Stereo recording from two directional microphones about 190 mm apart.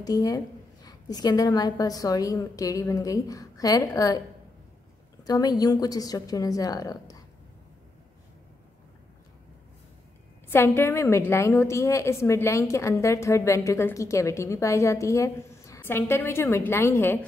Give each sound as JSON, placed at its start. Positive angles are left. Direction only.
{"t": 0.0, "sound": "a woman's voice", "side_deg": 20}
{"t": 5.2, "sound": "a woman's voice", "side_deg": 20}
{"t": 10.5, "sound": "a woman's voice", "side_deg": 10}